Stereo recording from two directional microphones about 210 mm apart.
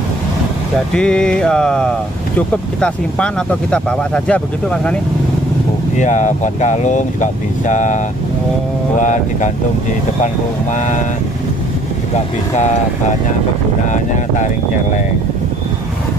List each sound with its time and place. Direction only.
0.9 s speech: 5° left (ahead or behind)
5.9 s speech: 35° left (ahead or behind)
13.8 s speech: 35° left (ahead or behind)